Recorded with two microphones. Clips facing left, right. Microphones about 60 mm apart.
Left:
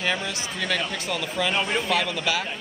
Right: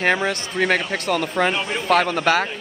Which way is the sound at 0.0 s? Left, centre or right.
Right.